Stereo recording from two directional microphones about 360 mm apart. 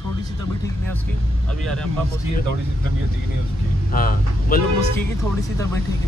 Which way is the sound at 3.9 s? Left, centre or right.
Left.